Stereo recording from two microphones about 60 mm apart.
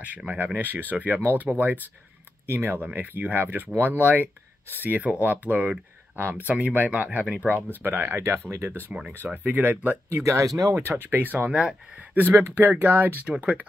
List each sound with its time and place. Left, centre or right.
0.6 s speech: right
2.4 s speech: right
2.8 s speech: right
7.4 s speech: right
9.2 s speech: right
10.0 s speech: right
10.7 s speech: right
11.0 s speech: right
12.4 s speech: right
12.8 s speech: right